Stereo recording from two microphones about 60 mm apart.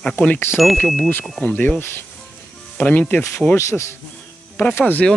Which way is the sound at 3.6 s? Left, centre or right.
Left.